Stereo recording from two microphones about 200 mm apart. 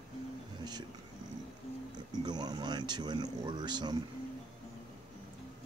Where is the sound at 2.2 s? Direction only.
20° right (ahead or behind).